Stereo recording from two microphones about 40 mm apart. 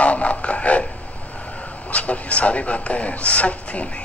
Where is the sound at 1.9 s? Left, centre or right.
Left.